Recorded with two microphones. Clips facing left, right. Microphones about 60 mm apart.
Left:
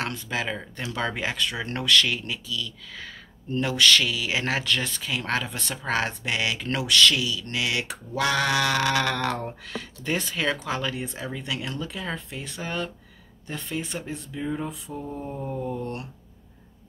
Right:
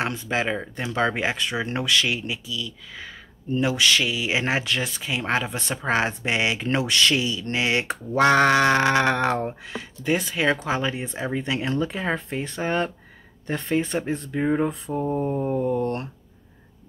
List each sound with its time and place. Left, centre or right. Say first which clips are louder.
0.0 s speech: right 4 dB; right
15.2 s speech: right 7 dB; right